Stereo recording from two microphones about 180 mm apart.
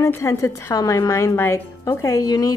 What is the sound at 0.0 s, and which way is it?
Speech, 15° left (ahead or behind).